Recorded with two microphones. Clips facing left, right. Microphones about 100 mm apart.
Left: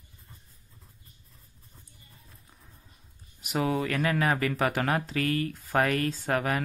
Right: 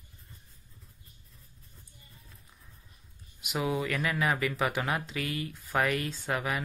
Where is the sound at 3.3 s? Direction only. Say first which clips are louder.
Left 3 dB; 40° left (ahead or behind).